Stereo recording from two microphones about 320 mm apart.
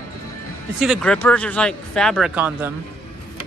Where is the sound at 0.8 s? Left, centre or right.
Centre.